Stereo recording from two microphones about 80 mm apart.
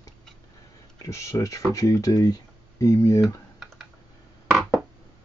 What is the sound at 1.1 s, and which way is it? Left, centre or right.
Speech, left.